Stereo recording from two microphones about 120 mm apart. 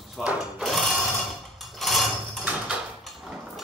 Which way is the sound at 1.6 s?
Centre (ahead or behind).